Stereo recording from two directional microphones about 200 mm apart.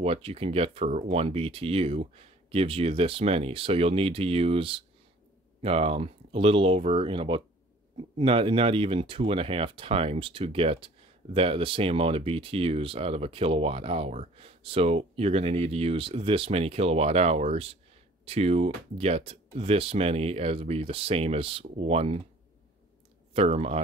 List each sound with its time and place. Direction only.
0.0 s speech: 30° right (ahead or behind)
23.3 s speech: 30° right (ahead or behind)